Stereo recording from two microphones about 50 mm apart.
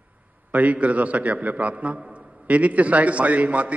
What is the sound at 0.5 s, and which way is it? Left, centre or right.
A man's voice, right.